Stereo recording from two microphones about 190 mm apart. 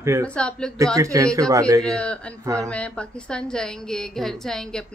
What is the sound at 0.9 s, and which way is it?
Speech, 15° right (ahead or behind).